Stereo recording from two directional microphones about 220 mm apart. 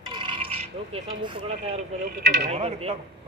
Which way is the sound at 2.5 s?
30° right (ahead or behind).